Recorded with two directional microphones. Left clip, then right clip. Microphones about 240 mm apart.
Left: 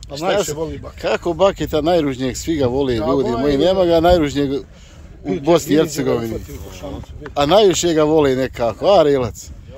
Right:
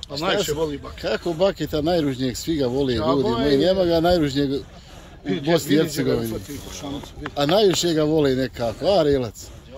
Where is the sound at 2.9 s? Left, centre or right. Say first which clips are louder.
Left 3 dB; left.